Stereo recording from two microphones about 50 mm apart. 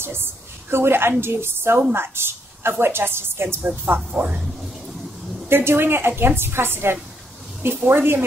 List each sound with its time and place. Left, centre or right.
0.0 s a woman's voice: right
3.6 s speech: right
5.5 s a woman's voice: right